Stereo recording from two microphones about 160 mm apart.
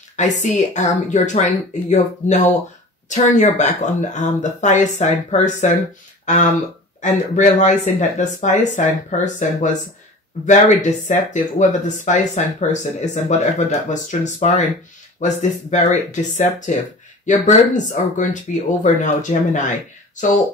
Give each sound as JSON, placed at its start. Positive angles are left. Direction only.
{"t": 0.1, "sound": "speech", "side_deg": 50}
{"t": 7.0, "sound": "speech", "side_deg": 50}